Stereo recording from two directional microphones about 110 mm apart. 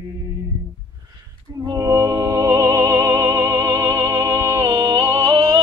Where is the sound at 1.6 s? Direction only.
30° right (ahead or behind).